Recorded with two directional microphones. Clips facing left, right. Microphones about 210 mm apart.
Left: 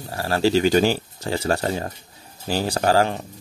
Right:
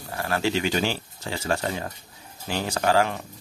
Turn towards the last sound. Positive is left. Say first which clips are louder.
# left 3 dB
turn(degrees=35)  # may be behind; listen again after turning